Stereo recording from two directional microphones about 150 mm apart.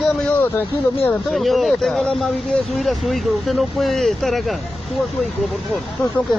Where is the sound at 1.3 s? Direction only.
Centre (ahead or behind).